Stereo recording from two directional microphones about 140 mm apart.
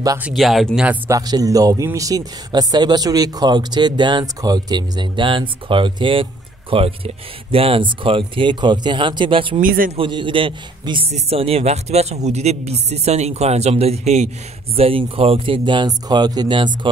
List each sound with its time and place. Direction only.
0.3 s speech: centre (ahead or behind)
1.1 s a man's voice: 25° right (ahead or behind)
9.6 s a man's voice: 85° right
9.9 s speech: 35° right (ahead or behind); by 14.3 s 50° right (ahead or behind)
14.8 s speech: 40° right (ahead or behind)